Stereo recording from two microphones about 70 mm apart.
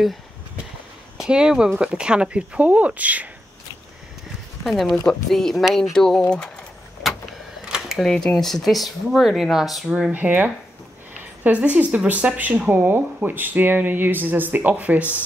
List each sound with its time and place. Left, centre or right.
1.1 s speech: centre
4.6 s speech: centre
7.0 s vehicle: centre
7.6 s camera: centre
8.0 s speech: centre
10.1 s speech: right